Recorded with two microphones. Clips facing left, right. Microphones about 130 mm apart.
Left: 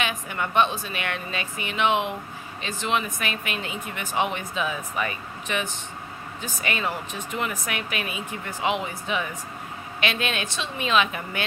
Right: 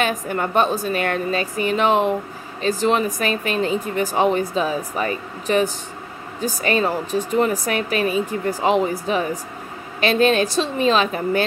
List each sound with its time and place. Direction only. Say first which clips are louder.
0.0 s speech: right 7 dB; 40° right (ahead or behind)